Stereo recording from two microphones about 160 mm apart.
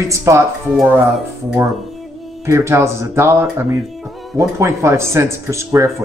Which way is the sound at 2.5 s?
15° right (ahead or behind).